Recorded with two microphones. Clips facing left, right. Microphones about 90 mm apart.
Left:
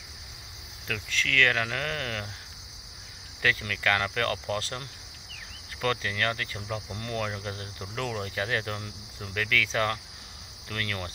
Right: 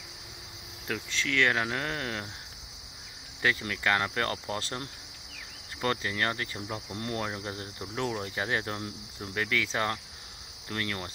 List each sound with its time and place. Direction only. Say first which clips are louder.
0.8 s cricket: left 1 dB; 20° right (ahead or behind)
3.4 s cricket: left 1 dB; 20° right (ahead or behind)